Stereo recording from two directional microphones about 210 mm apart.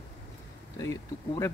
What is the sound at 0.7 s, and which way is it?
Speech, 15° left (ahead or behind).